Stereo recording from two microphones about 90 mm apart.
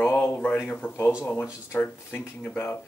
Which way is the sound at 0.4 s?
15° left (ahead or behind).